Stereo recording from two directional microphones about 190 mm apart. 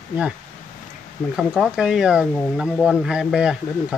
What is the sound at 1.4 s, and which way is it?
Speech, centre (ahead or behind).